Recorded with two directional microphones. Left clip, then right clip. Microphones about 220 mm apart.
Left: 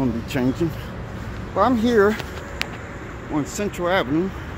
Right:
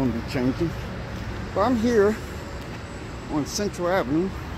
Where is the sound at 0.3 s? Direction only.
10° left (ahead or behind).